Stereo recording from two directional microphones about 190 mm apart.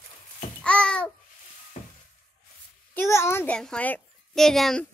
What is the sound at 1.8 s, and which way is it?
Glass, 40° left (ahead or behind).